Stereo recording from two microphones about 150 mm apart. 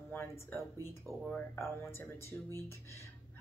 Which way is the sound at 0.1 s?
15° left (ahead or behind).